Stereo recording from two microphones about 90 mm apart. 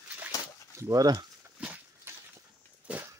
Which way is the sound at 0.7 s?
40° right (ahead or behind).